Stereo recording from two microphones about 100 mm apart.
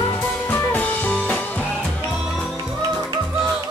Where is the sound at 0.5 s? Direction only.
20° left (ahead or behind).